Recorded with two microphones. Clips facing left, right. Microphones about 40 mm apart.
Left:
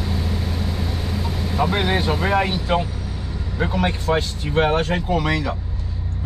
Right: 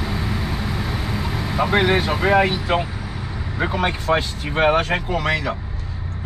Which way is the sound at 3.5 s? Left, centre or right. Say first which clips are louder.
Right 1 dB; centre.